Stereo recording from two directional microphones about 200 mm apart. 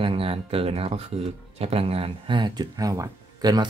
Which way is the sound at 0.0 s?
25° right (ahead or behind).